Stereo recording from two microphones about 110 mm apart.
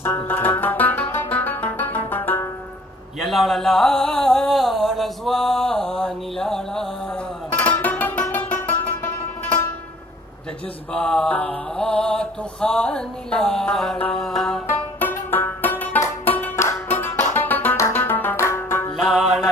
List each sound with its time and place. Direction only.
0.3 s music: 15° left (ahead or behind)
3.3 s a sound: centre (ahead or behind)
7.8 s music: 15° left (ahead or behind)
10.9 s mantra: 10° left (ahead or behind)
14.2 s music: 5° left (ahead or behind)
14.7 s music: 15° left (ahead or behind)
18.9 s music: centre (ahead or behind)